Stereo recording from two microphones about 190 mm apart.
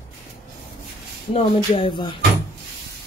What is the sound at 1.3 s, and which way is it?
Speech, 30° left (ahead or behind).